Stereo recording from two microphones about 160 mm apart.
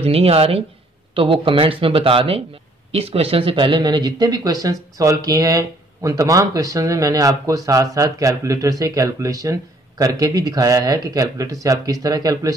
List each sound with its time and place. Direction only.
0.0 s speech: 40° right (ahead or behind); by 12.5 s 20° right (ahead or behind)